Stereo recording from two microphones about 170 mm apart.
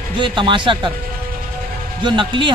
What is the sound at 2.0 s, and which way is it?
Speech, 30° right (ahead or behind).